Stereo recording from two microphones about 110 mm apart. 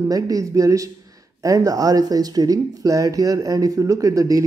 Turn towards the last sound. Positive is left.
turn(degrees=-30)  # may be behind; listen again after turning